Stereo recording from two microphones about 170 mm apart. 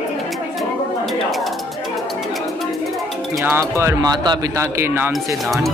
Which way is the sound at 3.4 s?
15° right (ahead or behind).